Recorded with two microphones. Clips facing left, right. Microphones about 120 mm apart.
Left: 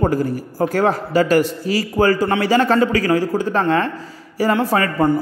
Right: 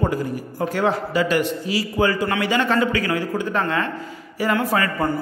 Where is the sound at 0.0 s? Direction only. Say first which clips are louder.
Left 4 dB; 40° left (ahead or behind).